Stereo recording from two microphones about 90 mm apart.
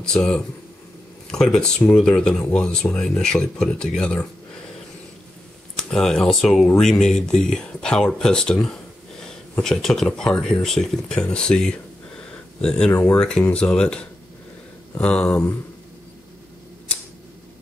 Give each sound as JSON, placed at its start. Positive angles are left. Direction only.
{"t": 0.0, "sound": "speech", "side_deg": 10}
{"t": 5.8, "sound": "speech", "side_deg": 5}